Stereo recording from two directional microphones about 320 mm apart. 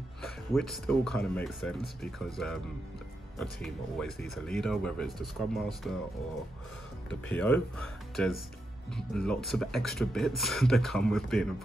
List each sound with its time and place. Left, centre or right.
0.2 s speech: centre
7.2 s speech: centre